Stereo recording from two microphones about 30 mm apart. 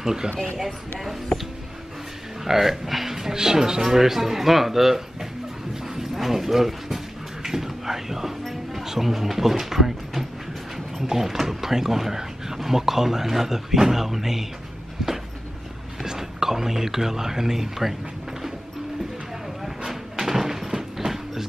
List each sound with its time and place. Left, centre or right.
0.0 s speech: centre
0.9 s speech: centre
2.4 s speech: centre
16.0 s speech: centre
20.2 s a sound: centre